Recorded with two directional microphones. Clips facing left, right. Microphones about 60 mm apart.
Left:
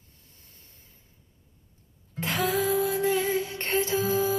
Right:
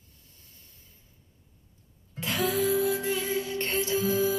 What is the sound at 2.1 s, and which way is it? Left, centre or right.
Music, left.